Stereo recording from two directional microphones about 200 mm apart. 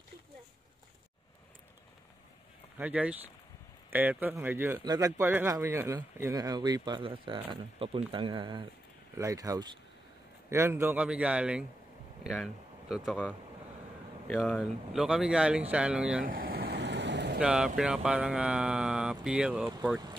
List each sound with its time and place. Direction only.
2.8 s speech: 5° right (ahead or behind)
16.3 s vehicle: 45° right (ahead or behind)
17.4 s speech: 5° right (ahead or behind)